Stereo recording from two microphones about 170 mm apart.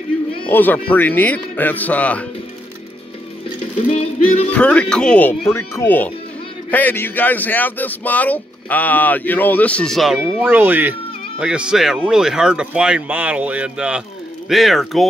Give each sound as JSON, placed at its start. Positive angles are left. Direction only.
{"t": 0.5, "sound": "speech", "side_deg": 10}
{"t": 3.9, "sound": "music", "side_deg": 35}
{"t": 4.5, "sound": "speech", "side_deg": 5}
{"t": 10.5, "sound": "speech", "side_deg": -10}